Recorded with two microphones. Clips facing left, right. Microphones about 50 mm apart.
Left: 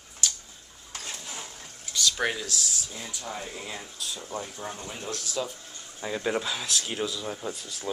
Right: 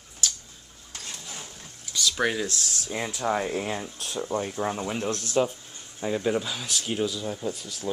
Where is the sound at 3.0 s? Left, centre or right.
Right.